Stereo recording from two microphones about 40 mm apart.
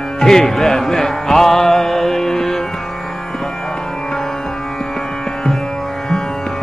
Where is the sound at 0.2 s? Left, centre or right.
Centre.